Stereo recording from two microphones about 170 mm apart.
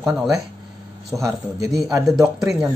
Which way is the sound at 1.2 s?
20° right (ahead or behind).